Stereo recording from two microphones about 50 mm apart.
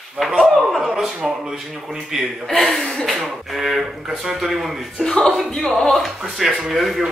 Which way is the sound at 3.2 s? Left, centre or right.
Centre.